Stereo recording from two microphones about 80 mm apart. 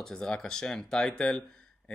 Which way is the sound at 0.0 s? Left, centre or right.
Centre.